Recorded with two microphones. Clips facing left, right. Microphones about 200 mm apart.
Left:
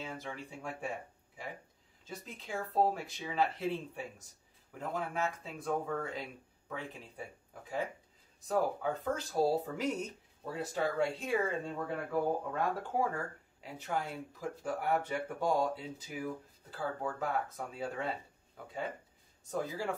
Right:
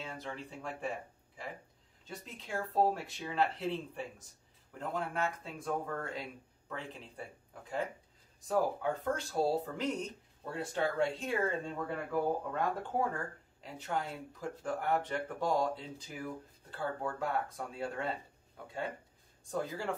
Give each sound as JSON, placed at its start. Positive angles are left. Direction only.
{"t": 0.0, "sound": "speech", "side_deg": 5}
{"t": 2.0, "sound": "speech", "side_deg": 5}
{"t": 19.5, "sound": "speech", "side_deg": 10}